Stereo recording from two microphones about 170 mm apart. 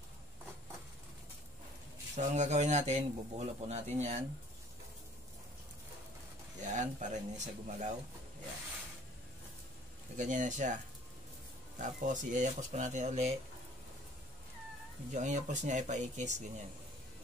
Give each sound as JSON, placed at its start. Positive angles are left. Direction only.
{"t": 2.1, "sound": "speech", "side_deg": -45}
{"t": 6.6, "sound": "speech", "side_deg": -45}
{"t": 10.1, "sound": "speech", "side_deg": -45}
{"t": 11.8, "sound": "speech", "side_deg": -45}
{"t": 15.1, "sound": "speech", "side_deg": -45}